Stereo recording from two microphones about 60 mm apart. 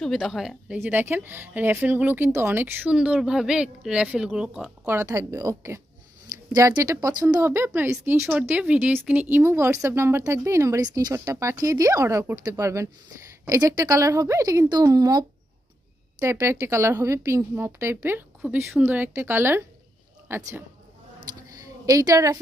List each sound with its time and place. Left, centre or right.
0.2 s a woman's voice: centre
0.8 s speech: right
2.9 s a woman's voice: centre
5.0 s speech: right
7.3 s a woman's voice: right
8.1 s speech: right
9.4 s a woman's voice: right
11.2 s speech: right
13.5 s a woman's voice: right
16.2 s speech: right
16.7 s a woman's voice: right
21.6 s a woman's voice: right